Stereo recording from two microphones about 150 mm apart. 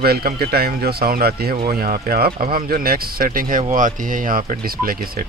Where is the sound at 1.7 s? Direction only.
75° right (ahead or behind).